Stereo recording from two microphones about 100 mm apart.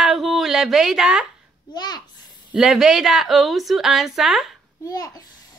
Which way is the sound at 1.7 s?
45° left (ahead or behind).